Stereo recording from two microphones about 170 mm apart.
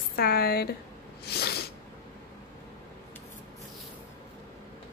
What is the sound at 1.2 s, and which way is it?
Sneeze, 70° left (ahead or behind).